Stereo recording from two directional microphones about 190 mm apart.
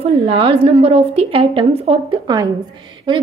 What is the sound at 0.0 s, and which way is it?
A woman's voice, 30° right (ahead or behind).